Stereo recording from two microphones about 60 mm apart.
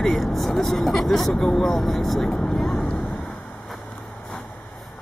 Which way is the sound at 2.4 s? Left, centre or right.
Centre.